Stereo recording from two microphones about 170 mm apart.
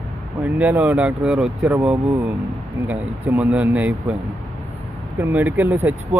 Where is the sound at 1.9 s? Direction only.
20° right (ahead or behind).